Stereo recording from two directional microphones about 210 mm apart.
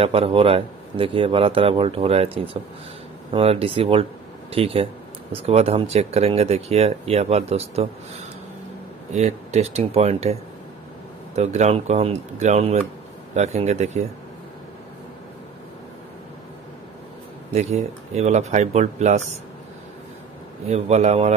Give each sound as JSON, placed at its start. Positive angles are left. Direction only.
{"t": 0.0, "sound": "speech", "side_deg": -25}
{"t": 9.1, "sound": "speech", "side_deg": -30}
{"t": 11.3, "sound": "speech", "side_deg": -30}
{"t": 18.1, "sound": "speech", "side_deg": -30}
{"t": 20.6, "sound": "speech", "side_deg": -30}